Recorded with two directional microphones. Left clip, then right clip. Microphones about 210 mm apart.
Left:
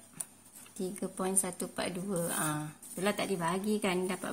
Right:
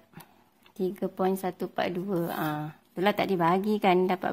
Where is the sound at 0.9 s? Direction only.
40° right (ahead or behind).